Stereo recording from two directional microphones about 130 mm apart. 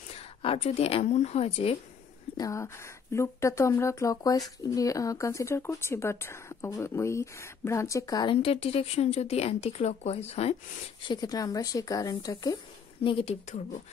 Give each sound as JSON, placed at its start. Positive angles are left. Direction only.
{"t": 0.1, "sound": "a woman's voice", "side_deg": 50}
{"t": 2.3, "sound": "speech", "side_deg": 25}
{"t": 8.4, "sound": "speech", "side_deg": 50}
{"t": 11.1, "sound": "speech", "side_deg": 30}
{"t": 13.0, "sound": "speech", "side_deg": 45}